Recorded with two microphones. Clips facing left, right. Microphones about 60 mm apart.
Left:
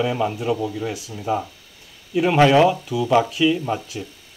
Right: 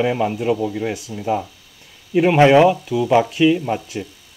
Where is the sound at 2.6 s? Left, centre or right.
Centre.